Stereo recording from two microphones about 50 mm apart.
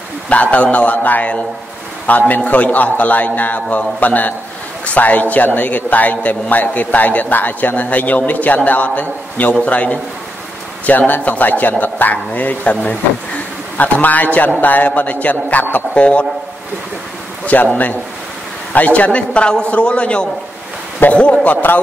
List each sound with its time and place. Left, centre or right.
0.3 s a man's voice: left
17.5 s a man's voice: left
21.5 s a man's voice: left